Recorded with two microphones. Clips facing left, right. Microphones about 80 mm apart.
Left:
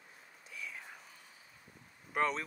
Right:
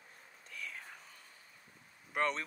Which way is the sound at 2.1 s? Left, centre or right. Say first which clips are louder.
Left 1 dB; centre.